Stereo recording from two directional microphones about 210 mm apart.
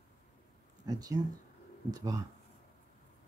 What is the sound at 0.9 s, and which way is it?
Speech, 15° right (ahead or behind).